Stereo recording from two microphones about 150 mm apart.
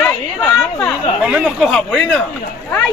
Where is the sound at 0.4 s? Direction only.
20° left (ahead or behind).